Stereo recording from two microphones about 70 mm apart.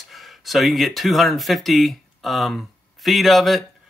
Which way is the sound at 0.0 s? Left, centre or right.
Centre.